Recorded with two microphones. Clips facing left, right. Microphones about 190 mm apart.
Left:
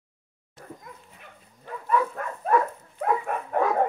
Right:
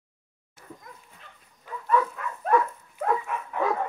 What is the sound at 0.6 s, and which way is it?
Speech, 50° left (ahead or behind).